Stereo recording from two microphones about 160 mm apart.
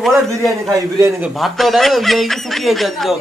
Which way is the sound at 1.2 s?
Centre (ahead or behind).